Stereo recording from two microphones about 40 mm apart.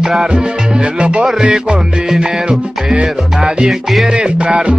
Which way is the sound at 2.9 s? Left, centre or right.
Right.